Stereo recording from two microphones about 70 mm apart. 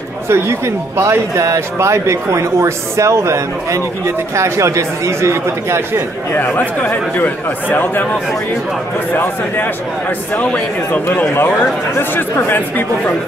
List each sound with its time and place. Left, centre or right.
0.3 s speech: right
6.3 s speech: left
9.1 s a man's voice: left
10.9 s speech: left